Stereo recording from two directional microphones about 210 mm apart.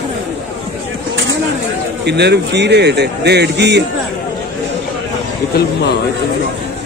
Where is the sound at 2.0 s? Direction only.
55° right (ahead or behind).